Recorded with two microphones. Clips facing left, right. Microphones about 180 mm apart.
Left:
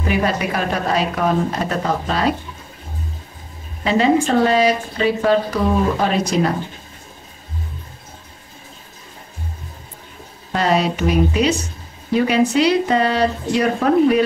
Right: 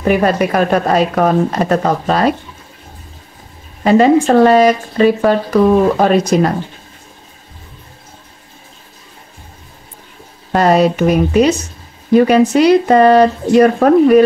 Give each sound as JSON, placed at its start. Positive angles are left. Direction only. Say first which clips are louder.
{"t": 0.1, "sound": "speech", "louder": "right 7 dB", "side_deg": -50}
{"t": 3.8, "sound": "speech", "louder": "right 6 dB", "side_deg": -50}
{"t": 10.5, "sound": "speech", "louder": "right 7 dB", "side_deg": -50}